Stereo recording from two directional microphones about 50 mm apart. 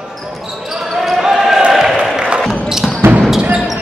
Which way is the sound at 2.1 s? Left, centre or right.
Centre.